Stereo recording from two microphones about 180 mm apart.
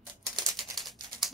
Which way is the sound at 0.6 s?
Centre (ahead or behind).